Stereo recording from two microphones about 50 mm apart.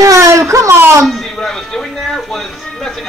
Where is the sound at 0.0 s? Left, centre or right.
Right.